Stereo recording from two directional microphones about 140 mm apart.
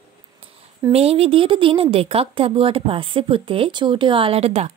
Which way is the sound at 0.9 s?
45° right (ahead or behind).